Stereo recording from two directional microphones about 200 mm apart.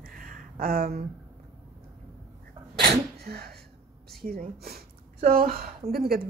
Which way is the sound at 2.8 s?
50° right (ahead or behind).